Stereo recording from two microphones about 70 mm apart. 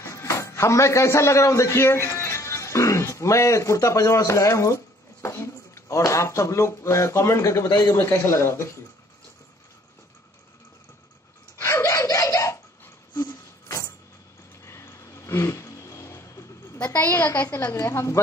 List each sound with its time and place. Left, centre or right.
0.0 s a man's voice: left
11.6 s a sound: left
16.8 s a woman's voice: left
17.8 s a woman's voice: left